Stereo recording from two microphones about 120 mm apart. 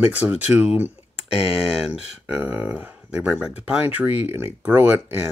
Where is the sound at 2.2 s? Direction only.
10° right (ahead or behind).